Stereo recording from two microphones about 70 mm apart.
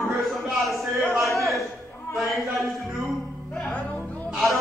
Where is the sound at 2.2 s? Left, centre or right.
Centre.